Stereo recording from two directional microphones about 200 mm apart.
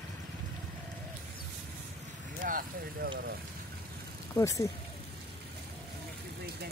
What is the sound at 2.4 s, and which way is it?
Vehicle, 45° right (ahead or behind).